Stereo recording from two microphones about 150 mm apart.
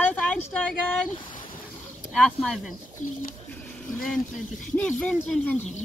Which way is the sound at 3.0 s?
55° left (ahead or behind).